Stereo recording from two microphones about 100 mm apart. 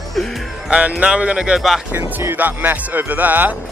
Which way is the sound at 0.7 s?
15° right (ahead or behind).